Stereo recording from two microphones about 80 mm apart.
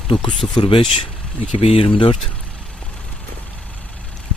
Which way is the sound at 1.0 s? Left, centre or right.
Centre.